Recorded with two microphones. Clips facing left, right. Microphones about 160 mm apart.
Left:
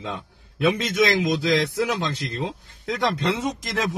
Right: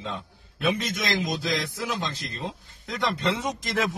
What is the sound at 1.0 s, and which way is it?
A man's voice, 75° left (ahead or behind).